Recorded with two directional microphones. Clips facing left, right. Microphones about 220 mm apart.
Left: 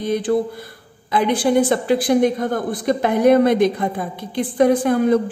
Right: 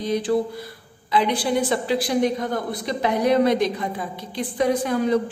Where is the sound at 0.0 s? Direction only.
50° left (ahead or behind).